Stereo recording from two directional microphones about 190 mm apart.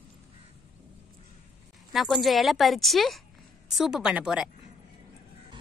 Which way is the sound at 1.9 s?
Centre (ahead or behind).